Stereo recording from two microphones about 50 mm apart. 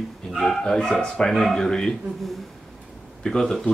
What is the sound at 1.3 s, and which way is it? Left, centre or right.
Speech, centre.